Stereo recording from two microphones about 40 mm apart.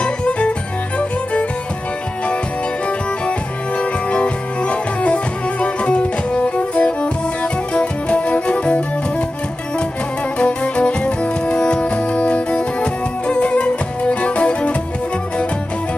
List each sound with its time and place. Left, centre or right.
0.0 s music: left
3.3 s music: left
10.4 s music: left